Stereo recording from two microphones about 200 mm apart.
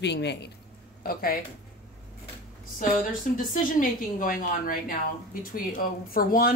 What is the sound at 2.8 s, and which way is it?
A woman's voice, 40° left (ahead or behind).